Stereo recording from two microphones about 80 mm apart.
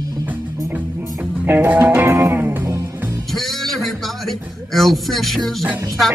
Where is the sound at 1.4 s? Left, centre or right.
Right.